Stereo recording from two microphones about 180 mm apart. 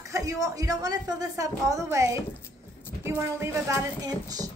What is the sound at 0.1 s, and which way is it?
A woman's voice, 20° right (ahead or behind).